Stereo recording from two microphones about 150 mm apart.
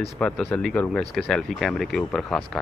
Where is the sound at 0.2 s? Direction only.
5° left (ahead or behind).